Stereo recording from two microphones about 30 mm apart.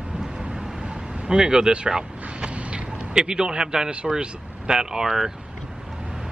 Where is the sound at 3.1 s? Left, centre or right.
Right.